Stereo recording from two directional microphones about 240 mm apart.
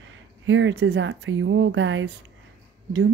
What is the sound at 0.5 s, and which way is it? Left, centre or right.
Speech, right.